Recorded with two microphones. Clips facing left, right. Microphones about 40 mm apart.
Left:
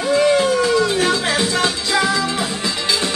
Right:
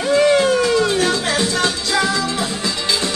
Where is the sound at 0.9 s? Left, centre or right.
Centre.